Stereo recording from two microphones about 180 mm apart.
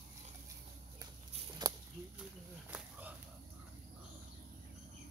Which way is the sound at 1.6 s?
20° right (ahead or behind).